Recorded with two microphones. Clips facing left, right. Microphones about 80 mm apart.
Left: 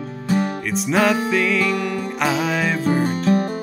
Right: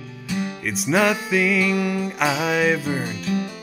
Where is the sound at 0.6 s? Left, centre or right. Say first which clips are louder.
Even; centre.